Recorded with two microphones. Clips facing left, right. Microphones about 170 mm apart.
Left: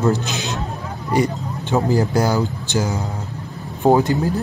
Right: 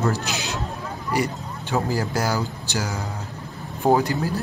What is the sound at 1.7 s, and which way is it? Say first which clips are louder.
Speech: left 6 dB; 20° left (ahead or behind).